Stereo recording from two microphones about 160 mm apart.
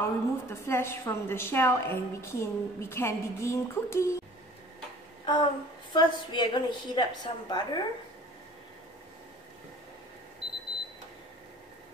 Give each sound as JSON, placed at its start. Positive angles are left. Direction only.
{"t": 0.0, "sound": "a woman's voice", "side_deg": 15}
{"t": 5.2, "sound": "a sound", "side_deg": 30}
{"t": 5.9, "sound": "a woman's voice", "side_deg": 30}